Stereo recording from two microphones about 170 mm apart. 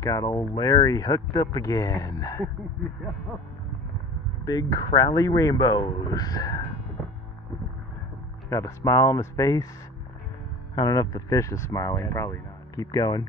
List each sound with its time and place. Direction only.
0.0 s speech: 20° left (ahead or behind)
4.5 s speech: 25° left (ahead or behind)
8.5 s speech: 20° left (ahead or behind)
10.7 s speech: 25° left (ahead or behind)